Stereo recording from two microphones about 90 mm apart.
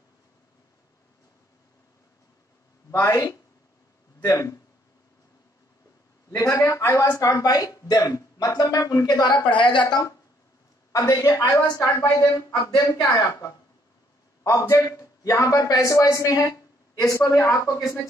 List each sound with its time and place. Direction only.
2.9 s a man's voice: 40° left (ahead or behind)
6.3 s a man's voice: 35° left (ahead or behind)
7.2 s speech: 45° left (ahead or behind)
9.5 s speech: 65° left (ahead or behind)
10.9 s a man's voice: 40° left (ahead or behind)